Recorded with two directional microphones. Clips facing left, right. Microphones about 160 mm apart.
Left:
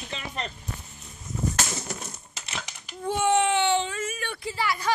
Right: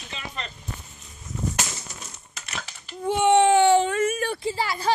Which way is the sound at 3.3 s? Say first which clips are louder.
Right 7 dB; 35° right (ahead or behind).